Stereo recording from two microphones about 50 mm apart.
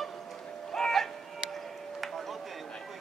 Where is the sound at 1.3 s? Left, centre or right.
Centre.